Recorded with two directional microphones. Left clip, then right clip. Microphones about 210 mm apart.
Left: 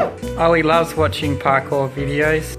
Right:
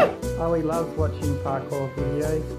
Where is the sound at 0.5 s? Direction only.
15° left (ahead or behind).